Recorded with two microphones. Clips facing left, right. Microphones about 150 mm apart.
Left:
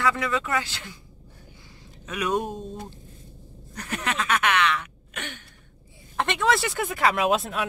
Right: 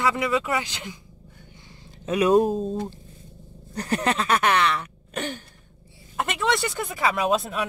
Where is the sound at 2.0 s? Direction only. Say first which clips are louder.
Right 8 dB; 30° right (ahead or behind).